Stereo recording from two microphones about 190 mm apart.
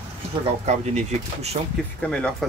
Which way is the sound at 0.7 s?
35° right (ahead or behind).